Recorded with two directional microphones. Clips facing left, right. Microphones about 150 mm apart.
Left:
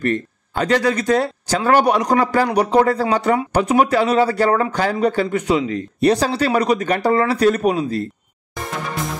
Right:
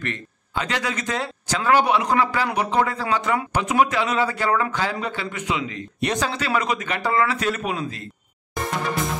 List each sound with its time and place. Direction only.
0.0 s speech: 40° left (ahead or behind)